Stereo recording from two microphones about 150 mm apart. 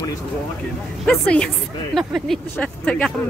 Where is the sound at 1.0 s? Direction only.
5° left (ahead or behind).